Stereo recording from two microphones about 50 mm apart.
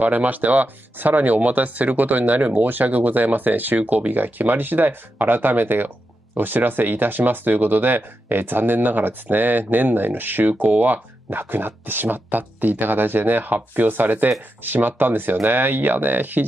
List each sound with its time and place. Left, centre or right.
0.0 s speech: right